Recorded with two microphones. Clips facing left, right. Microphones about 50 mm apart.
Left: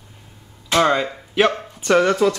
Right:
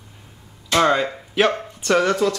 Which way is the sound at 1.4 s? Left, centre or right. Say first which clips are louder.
Left 1 dB; centre.